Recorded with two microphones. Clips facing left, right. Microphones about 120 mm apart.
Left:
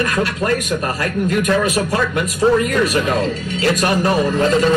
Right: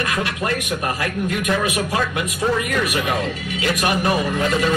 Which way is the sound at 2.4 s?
30° left (ahead or behind).